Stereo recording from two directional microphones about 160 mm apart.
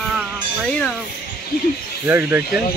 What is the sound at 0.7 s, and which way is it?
Speech, 5° left (ahead or behind).